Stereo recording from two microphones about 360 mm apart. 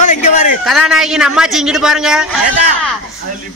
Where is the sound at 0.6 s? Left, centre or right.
Centre.